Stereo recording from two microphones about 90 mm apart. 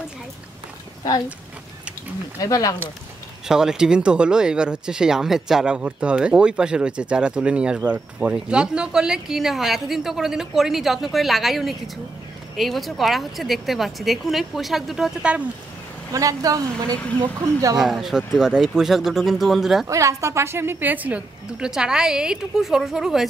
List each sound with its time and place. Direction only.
2.4 s speech: 40° left (ahead or behind)
3.4 s speech: 5° right (ahead or behind)
16.1 s a woman's voice: 40° right (ahead or behind)
17.7 s speech: 5° right (ahead or behind)
19.9 s speech: 35° right (ahead or behind); by 23.2 s 5° right (ahead or behind)